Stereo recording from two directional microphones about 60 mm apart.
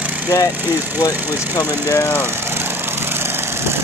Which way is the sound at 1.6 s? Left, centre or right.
Left.